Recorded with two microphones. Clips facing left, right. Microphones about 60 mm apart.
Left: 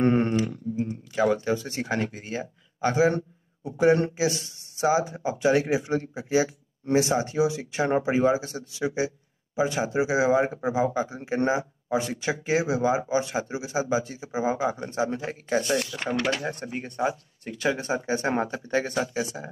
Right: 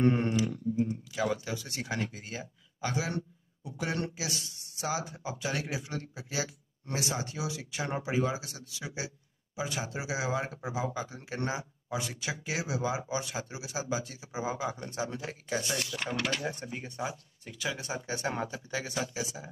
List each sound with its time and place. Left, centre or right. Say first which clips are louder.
0.0 s speech: left 5 dB; left